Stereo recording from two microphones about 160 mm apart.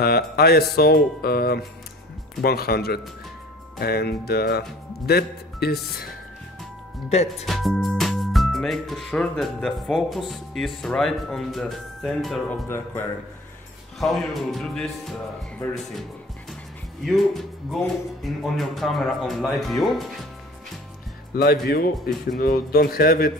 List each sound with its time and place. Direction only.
0.0 s a man's voice: 80° left
7.1 s speech: 40° left (ahead or behind)
7.4 s speech: centre (ahead or behind)
12.6 s speech: 15° left (ahead or behind)
13.9 s speech: centre (ahead or behind)
21.4 s a man's voice: 75° left (ahead or behind)